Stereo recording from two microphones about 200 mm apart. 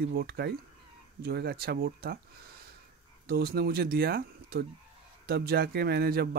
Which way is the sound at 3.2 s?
50° right (ahead or behind).